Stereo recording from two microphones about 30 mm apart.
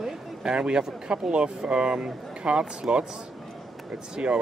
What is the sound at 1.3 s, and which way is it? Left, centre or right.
Speech, right.